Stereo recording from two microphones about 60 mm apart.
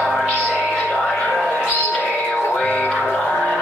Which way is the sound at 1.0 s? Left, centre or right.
Centre.